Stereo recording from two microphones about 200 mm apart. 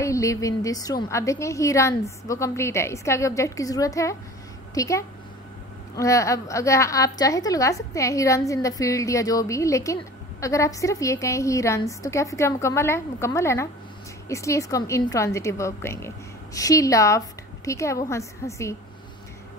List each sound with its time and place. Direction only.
0.0 s a woman's voice: 15° left (ahead or behind)